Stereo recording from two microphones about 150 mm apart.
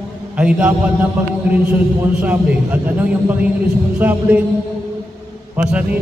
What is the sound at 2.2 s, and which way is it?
Speech, 10° right (ahead or behind).